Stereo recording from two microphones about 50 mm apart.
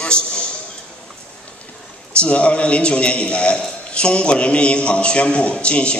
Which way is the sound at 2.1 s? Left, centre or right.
Left.